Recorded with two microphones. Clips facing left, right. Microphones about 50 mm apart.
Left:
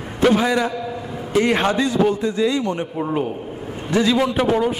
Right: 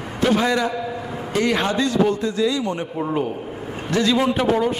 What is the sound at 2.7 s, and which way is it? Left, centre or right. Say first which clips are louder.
A man's voice: left 1 dB; centre.